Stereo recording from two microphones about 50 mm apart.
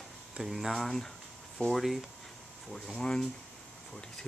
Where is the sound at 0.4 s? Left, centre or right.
Centre.